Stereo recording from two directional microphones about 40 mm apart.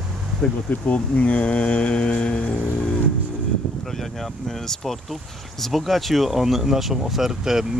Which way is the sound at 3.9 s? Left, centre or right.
Centre.